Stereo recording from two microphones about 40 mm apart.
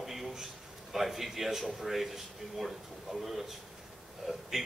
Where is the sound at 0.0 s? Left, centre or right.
Centre.